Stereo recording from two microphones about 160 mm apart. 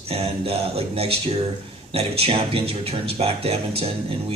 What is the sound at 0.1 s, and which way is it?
Speech, 35° right (ahead or behind).